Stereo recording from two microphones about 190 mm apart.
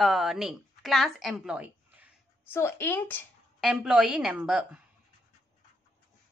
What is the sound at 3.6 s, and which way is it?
A woman's voice, 5° right (ahead or behind).